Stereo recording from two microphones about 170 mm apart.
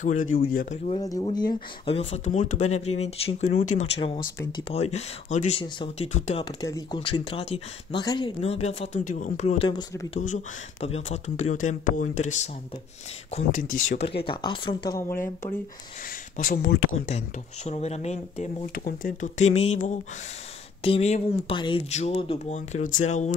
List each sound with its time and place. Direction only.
0.0 s speech: 50° left (ahead or behind)
1.2 s speech: 25° left (ahead or behind); by 5.6 s 40° left (ahead or behind)
5.6 s speech: 30° left (ahead or behind)
6.1 s speech: 40° left (ahead or behind)
6.4 s speech: 20° left (ahead or behind); by 9.7 s 45° left (ahead or behind)
9.7 s speech: 25° left (ahead or behind)
10.2 s speech: 40° left (ahead or behind)
14.2 s speech: 30° left (ahead or behind)
16.3 s speech: 60° left (ahead or behind)
17.6 s speech: 40° left (ahead or behind)
18.9 s speech: 55° left (ahead or behind)